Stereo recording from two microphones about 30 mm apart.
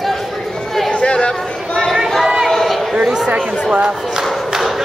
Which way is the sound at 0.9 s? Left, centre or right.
Left.